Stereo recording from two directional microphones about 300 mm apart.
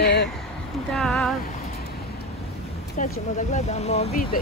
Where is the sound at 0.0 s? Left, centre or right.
Left.